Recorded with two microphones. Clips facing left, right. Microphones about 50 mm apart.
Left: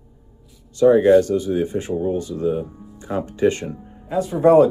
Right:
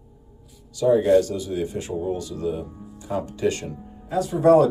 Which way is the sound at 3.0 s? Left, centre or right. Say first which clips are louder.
Left 5 dB; left.